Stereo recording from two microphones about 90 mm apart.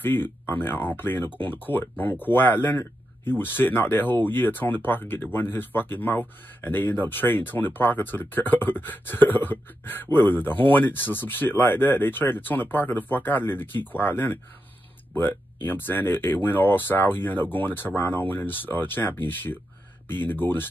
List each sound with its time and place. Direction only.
0.0 s speech: 25° left (ahead or behind)